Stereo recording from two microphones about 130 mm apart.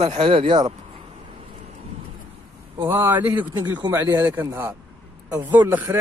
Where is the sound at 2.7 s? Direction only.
20° right (ahead or behind).